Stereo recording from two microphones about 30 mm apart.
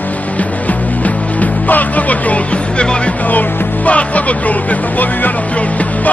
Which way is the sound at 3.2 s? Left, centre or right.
Left.